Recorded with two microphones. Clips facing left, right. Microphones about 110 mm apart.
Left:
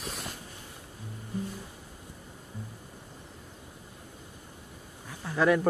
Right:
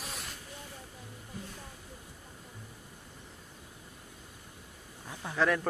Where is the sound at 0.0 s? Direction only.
Centre (ahead or behind).